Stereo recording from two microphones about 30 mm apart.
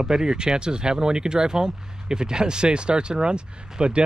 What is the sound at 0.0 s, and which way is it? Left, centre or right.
Speech, right.